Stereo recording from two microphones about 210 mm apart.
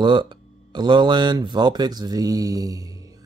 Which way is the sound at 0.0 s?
20° right (ahead or behind).